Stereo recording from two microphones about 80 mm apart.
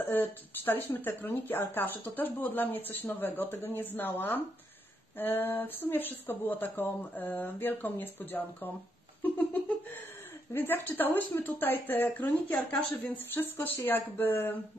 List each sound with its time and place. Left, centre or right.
0.0 s speech: left
10.5 s speech: left